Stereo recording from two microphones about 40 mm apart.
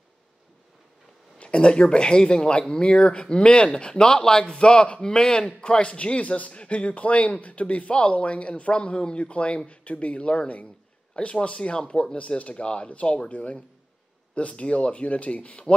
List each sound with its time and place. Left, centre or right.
1.4 s speech: left
5.7 s a man's voice: left
14.6 s a man's voice: left